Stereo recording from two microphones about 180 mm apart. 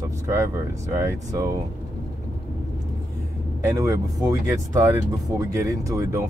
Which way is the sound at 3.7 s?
20° right (ahead or behind).